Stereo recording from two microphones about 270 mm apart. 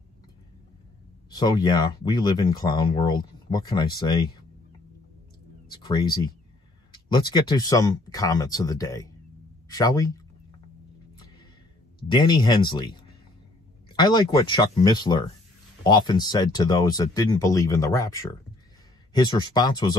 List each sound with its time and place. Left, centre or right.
1.3 s speech: centre
5.7 s speech: centre
12.1 s speech: centre